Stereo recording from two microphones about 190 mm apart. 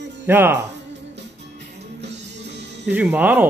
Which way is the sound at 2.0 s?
65° right (ahead or behind).